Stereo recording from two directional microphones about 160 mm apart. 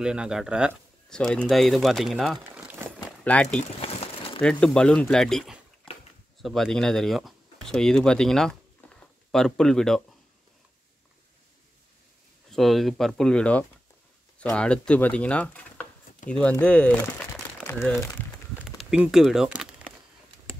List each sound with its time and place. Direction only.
0.0 s speech: 5° right (ahead or behind)
1.1 s speech: 5° left (ahead or behind)
3.8 s crumpling: 40° left (ahead or behind)
4.4 s speech: 5° left (ahead or behind)
12.4 s speech: centre (ahead or behind)
18.6 s speech: centre (ahead or behind)